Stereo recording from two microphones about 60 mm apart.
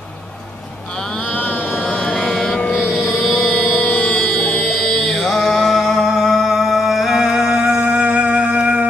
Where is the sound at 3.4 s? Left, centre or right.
Left.